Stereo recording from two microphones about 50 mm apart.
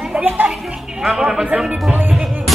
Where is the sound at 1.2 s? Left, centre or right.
Centre.